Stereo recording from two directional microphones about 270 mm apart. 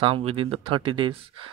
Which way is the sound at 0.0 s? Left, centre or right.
Right.